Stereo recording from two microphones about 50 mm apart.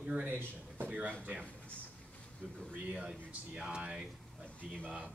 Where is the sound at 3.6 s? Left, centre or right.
Centre.